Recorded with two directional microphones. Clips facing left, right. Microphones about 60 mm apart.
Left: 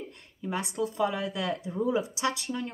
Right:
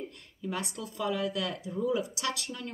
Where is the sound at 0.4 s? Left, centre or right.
Left.